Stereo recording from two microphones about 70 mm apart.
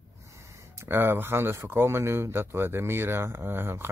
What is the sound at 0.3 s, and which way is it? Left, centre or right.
Gasp, right.